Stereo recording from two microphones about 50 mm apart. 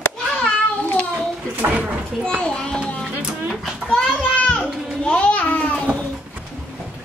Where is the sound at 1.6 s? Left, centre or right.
Right.